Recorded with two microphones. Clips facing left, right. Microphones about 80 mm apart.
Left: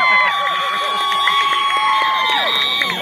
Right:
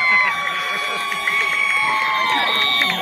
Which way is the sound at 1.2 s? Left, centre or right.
Left.